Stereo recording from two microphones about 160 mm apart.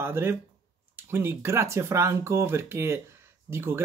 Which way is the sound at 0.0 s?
15° right (ahead or behind).